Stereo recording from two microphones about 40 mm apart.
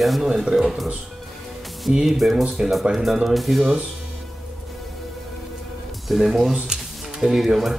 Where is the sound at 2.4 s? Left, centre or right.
Centre.